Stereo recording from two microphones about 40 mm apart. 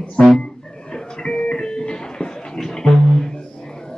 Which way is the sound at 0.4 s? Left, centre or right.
Left.